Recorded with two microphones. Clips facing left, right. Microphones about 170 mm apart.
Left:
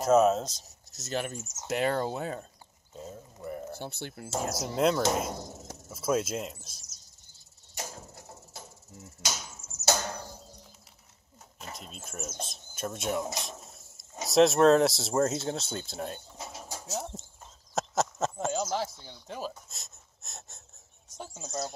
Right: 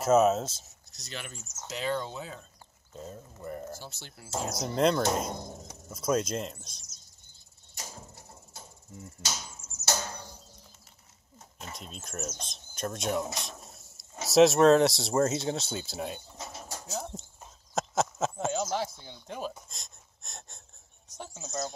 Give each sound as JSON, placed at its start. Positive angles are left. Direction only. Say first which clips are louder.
{"t": 0.0, "sound": "speech", "louder": "even", "side_deg": -5}
{"t": 1.0, "sound": "speech", "louder": "left 9 dB", "side_deg": 45}
{"t": 1.7, "sound": "speech", "louder": "left 4 dB", "side_deg": 55}
{"t": 2.9, "sound": "speech", "louder": "even", "side_deg": 5}
{"t": 3.7, "sound": "speech", "louder": "left 6 dB", "side_deg": 60}
{"t": 4.5, "sound": "speech", "louder": "right 1 dB", "side_deg": 5}
{"t": 9.6, "sound": "a sound", "louder": "left 2 dB", "side_deg": 70}
{"t": 11.5, "sound": "speech", "louder": "even", "side_deg": 0}
{"t": 16.3, "sound": "bird", "louder": "even", "side_deg": 5}
{"t": 17.7, "sound": "speech", "louder": "even", "side_deg": 0}
{"t": 19.7, "sound": "wheeze", "louder": "even", "side_deg": 5}
{"t": 21.2, "sound": "speech", "louder": "even", "side_deg": 10}